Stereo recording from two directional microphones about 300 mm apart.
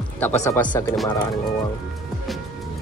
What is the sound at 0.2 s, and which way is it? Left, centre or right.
Speech, centre.